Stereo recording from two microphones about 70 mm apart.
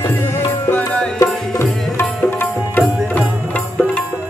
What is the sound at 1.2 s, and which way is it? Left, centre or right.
Music, left.